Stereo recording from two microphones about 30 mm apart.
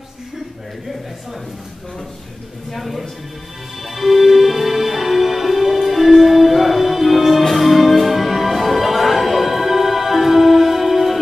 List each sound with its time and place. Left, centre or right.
2.7 s speech: centre
3.8 s music: centre